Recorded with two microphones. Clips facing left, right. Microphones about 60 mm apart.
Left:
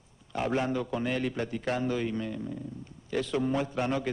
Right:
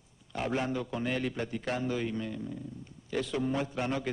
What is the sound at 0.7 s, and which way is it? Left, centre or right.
Speech, left.